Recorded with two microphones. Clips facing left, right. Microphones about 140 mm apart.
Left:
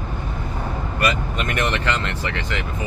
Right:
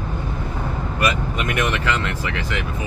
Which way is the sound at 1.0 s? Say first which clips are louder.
Right 1 dB; 10° right (ahead or behind).